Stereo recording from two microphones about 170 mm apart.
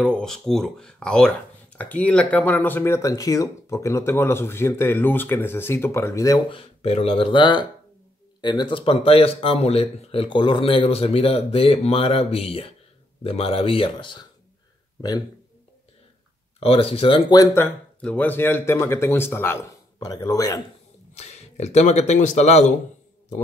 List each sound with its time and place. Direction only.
0.0 s speech: 5° left (ahead or behind); by 6.6 s 20° left (ahead or behind)
6.8 s speech: 35° left (ahead or behind)
16.5 s speech: 35° left (ahead or behind)
17.6 s speech: 10° left (ahead or behind)
21.1 s a man's voice: 40° left (ahead or behind)